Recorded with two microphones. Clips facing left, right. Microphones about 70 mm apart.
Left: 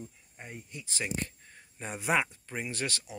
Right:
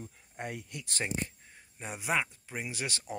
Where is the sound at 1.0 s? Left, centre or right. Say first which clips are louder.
Even; centre.